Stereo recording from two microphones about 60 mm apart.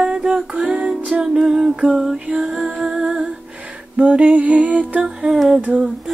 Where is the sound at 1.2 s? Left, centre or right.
Centre.